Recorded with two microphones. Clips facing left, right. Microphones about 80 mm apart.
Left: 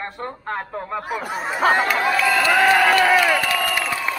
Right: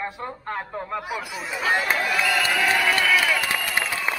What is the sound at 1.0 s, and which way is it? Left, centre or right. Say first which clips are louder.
Speech: left 5 dB; left.